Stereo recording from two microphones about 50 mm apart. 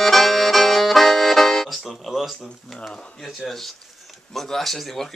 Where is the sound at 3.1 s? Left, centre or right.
Centre.